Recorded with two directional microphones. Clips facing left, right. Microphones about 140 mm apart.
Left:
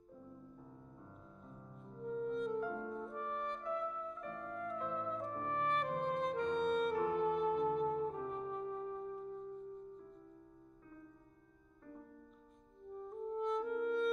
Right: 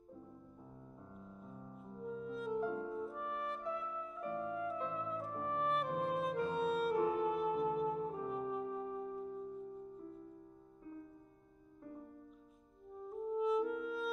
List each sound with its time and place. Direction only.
1.2 s music: 5° right (ahead or behind)
12.9 s music: 5° right (ahead or behind)